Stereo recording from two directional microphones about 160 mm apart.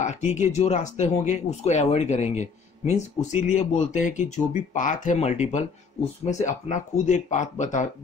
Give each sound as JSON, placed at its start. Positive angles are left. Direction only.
{"t": 0.0, "sound": "speech", "side_deg": 45}